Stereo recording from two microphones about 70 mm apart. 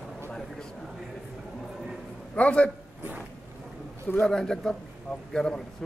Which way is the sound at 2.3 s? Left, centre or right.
Centre.